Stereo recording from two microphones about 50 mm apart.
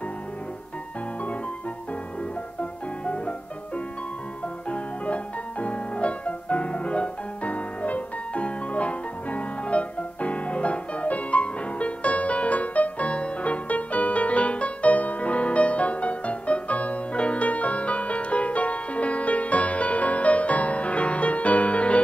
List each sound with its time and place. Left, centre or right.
3.1 s music: left